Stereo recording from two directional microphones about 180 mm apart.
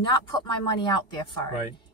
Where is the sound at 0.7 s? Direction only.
25° left (ahead or behind).